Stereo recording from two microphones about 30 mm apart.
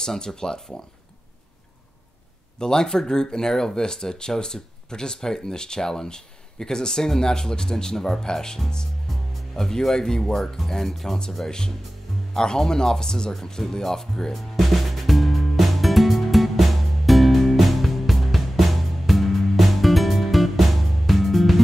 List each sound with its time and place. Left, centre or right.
0.0 s speech: centre
2.6 s speech: left
12.4 s speech: left
14.3 s music: centre